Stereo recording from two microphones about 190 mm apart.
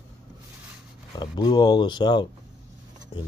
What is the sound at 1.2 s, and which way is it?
Speech, 20° left (ahead or behind).